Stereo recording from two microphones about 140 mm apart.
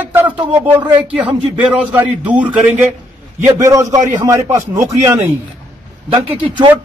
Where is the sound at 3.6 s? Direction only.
25° right (ahead or behind).